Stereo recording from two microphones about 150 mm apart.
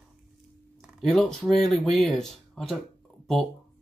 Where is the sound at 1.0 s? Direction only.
5° left (ahead or behind).